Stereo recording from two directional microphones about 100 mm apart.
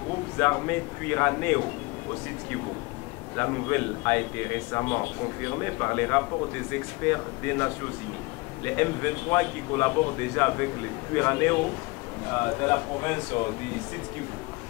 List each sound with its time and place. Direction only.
0.4 s a man's voice: 25° left (ahead or behind)
3.3 s a man's voice: 25° left (ahead or behind)